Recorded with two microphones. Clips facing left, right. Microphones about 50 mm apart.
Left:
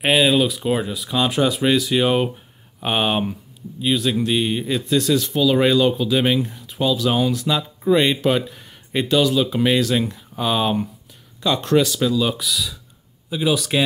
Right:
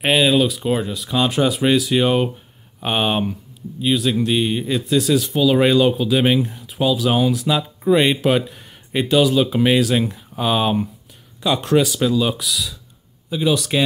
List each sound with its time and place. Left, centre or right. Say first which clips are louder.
0.0 s speech: right 1 dB; centre
12.4 s speech: even; centre